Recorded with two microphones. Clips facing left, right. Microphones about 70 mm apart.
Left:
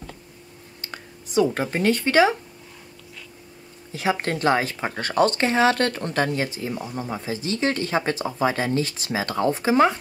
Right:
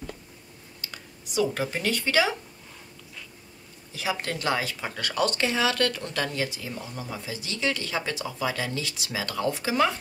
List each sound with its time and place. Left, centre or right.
0.7 s speech: left
3.9 s speech: left